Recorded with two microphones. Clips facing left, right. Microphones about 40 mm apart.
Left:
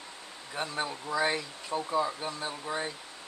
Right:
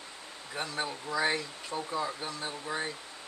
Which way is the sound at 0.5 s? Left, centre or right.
Centre.